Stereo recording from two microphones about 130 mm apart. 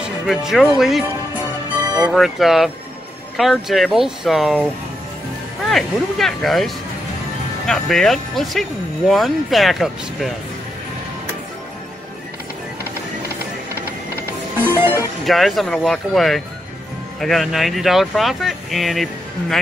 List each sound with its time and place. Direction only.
0.3 s speech: centre (ahead or behind)
2.1 s speech: centre (ahead or behind)
5.7 s speech: centre (ahead or behind)
14.6 s music: 15° right (ahead or behind)
15.2 s speech: centre (ahead or behind)